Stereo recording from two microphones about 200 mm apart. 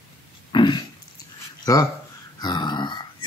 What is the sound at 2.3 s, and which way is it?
Grunt, 20° left (ahead or behind).